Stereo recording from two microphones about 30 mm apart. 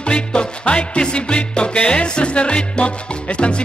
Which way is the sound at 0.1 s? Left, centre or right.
Left.